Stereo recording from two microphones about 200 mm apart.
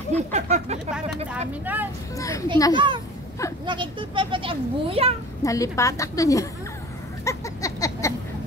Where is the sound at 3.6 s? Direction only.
25° right (ahead or behind).